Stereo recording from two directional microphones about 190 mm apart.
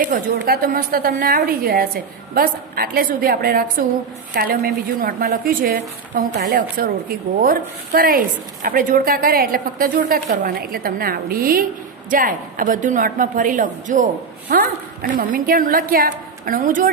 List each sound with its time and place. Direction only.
0.0 s a woman's voice: 50° right (ahead or behind)